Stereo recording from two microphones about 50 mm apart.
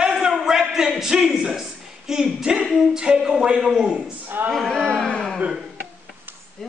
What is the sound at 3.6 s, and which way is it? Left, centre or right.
Speech, centre.